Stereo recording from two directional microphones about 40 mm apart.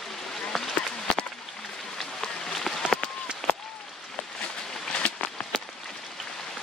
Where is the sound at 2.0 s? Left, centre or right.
Centre.